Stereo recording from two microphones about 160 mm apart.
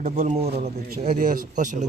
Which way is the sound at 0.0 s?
45° right (ahead or behind).